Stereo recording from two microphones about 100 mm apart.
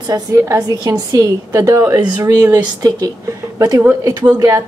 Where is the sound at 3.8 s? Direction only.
20° right (ahead or behind).